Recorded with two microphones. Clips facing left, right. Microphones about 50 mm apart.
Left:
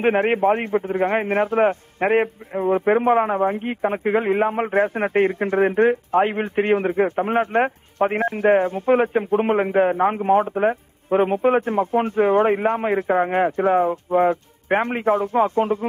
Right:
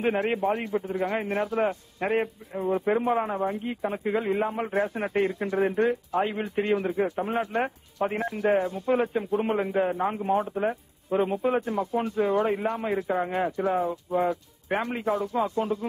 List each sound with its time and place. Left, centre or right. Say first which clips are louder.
0.0 s a man's voice: left 7 dB; left